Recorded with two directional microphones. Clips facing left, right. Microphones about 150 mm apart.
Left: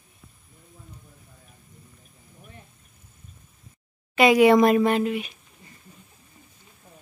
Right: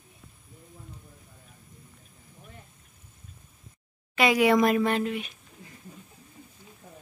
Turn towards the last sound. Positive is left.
turn(degrees=5)  # may be behind; listen again after turning